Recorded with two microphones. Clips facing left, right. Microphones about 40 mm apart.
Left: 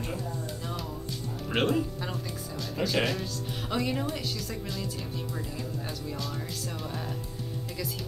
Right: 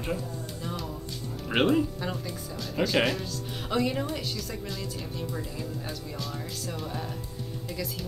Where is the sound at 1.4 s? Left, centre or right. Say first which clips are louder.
Right 3 dB; centre.